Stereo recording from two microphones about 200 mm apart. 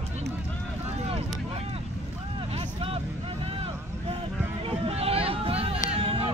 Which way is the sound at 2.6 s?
25° right (ahead or behind).